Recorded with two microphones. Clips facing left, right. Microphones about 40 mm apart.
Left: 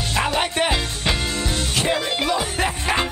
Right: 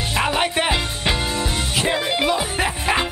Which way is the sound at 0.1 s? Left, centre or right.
Centre.